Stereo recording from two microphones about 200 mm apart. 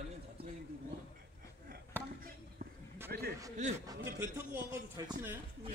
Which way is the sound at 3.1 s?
50° right (ahead or behind).